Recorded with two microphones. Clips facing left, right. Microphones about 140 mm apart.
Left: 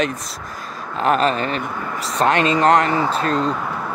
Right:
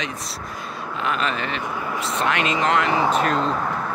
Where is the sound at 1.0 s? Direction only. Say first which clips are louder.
Left 8 dB; 40° left (ahead or behind).